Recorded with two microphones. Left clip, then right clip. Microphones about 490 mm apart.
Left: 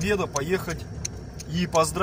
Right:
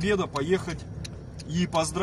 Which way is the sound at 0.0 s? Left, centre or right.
Right.